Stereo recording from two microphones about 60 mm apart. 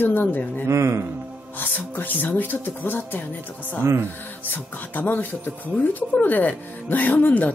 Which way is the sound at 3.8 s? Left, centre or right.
Right.